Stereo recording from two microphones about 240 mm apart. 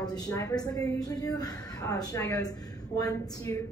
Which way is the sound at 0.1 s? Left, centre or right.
Centre.